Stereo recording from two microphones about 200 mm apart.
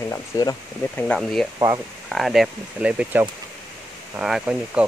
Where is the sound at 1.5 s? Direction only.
20° right (ahead or behind).